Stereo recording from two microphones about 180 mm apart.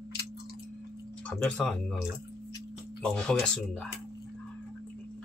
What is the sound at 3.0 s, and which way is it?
Speech, 5° left (ahead or behind).